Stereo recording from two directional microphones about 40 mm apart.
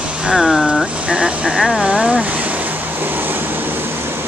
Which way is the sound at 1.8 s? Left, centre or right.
Right.